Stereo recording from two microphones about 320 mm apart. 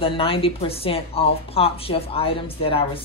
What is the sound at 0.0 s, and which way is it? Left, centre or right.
A woman's voice, centre.